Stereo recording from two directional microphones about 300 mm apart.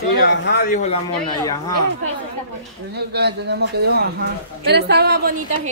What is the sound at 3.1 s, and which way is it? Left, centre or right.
A woman's voice, right.